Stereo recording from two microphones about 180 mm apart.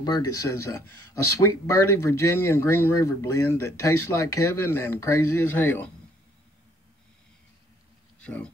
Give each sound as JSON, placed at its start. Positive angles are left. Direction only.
{"t": 0.0, "sound": "speech", "side_deg": 20}
{"t": 8.2, "sound": "speech", "side_deg": 10}